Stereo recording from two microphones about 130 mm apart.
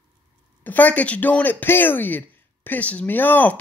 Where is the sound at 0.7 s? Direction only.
15° left (ahead or behind).